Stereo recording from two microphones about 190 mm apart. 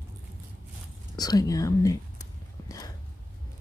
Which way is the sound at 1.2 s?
20° left (ahead or behind).